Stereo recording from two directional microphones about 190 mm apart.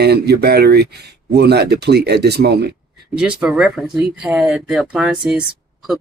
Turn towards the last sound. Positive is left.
turn(degrees=-5)  # may be behind; listen again after turning